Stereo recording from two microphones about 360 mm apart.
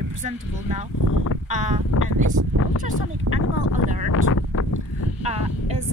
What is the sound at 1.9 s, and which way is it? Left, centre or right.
Speech, left.